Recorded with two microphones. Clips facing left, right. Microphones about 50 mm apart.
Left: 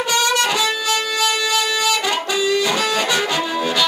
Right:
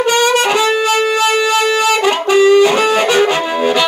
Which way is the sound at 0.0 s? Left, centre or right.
Right.